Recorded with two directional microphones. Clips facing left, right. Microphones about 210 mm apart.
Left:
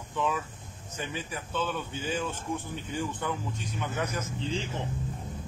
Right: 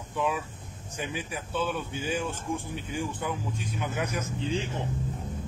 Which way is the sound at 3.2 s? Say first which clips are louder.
Even; 10° right (ahead or behind).